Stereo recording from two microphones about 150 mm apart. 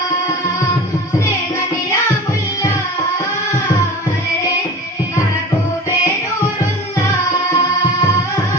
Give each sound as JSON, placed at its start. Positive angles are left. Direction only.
{"t": 7.5, "sound": "music", "side_deg": 30}